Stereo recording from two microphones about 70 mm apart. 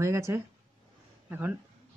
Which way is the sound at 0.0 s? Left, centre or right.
Right.